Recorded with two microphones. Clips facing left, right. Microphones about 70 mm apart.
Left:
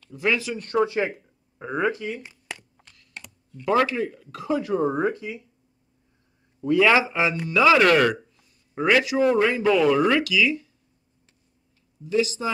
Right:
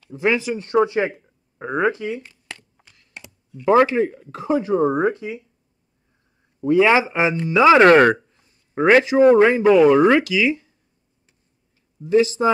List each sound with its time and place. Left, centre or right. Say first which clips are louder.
0.1 s speech: right 4 dB; right
2.5 s a sound: even; centre
3.6 s speech: right 6 dB; right
6.6 s speech: right 3 dB; right
12.0 s speech: right 7 dB; right